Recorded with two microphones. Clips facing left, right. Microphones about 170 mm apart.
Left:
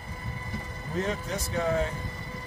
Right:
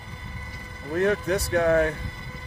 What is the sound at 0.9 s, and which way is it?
Speech, 65° right (ahead or behind).